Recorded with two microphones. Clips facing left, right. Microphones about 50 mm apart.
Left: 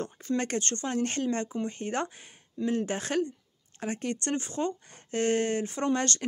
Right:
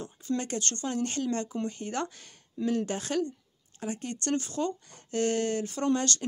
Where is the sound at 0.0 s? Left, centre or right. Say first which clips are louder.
Left 5 dB; left.